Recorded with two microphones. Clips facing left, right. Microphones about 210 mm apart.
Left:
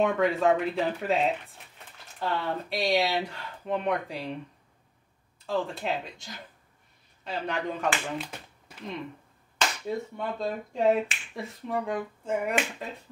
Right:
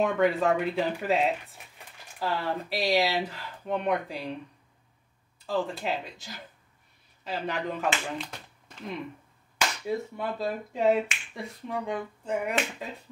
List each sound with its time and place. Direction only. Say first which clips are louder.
0.0 s speech: even; centre (ahead or behind)
5.5 s speech: even; centre (ahead or behind)
8.2 s a sound: left 1 dB; 5° left (ahead or behind)
9.8 s speech: right 1 dB; 5° right (ahead or behind)